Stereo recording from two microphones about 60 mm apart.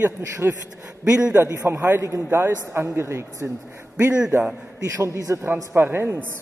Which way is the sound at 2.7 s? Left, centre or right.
Right.